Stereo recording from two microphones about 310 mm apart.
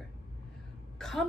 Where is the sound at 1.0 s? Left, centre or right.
Centre.